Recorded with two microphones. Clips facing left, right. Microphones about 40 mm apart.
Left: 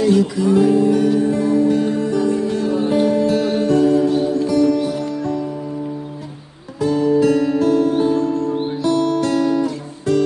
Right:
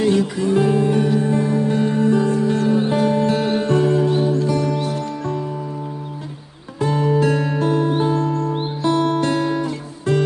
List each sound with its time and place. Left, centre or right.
0.0 s music: right
6.8 s music: right